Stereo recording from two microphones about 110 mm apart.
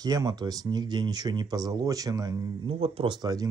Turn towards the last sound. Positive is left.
turn(degrees=-35)  # may be behind; listen again after turning